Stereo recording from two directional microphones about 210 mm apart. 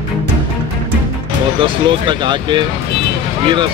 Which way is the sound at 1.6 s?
25° right (ahead or behind).